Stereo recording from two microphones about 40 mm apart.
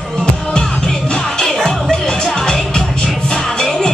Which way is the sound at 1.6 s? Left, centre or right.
Centre.